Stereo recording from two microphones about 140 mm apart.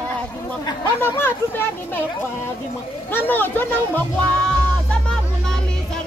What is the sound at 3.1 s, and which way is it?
Speech, 15° left (ahead or behind).